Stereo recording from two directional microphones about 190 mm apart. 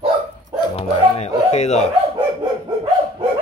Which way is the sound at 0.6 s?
30° left (ahead or behind).